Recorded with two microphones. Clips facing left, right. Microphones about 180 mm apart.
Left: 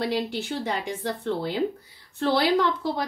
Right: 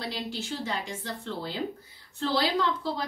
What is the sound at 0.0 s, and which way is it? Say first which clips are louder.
A woman's voice: left 8 dB; 60° left (ahead or behind).